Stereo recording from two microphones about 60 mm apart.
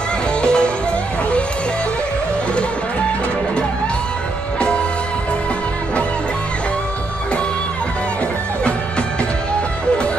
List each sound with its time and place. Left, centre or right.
0.4 s music: centre
4.6 s music: centre